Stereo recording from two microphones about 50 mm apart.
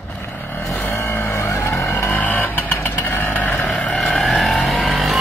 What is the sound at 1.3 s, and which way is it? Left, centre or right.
Vehicle, left.